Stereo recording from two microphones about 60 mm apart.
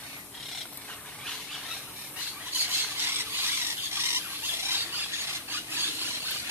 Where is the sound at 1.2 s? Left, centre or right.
Centre.